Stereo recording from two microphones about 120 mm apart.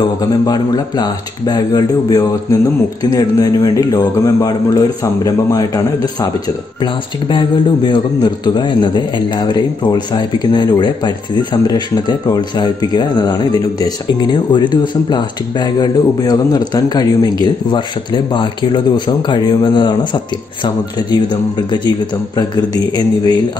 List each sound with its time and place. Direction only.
0.5 s a man's voice: 35° left (ahead or behind)
6.8 s a man's voice: 40° left (ahead or behind)